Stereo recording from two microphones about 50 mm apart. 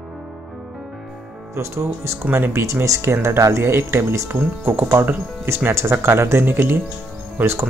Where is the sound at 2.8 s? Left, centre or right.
Right.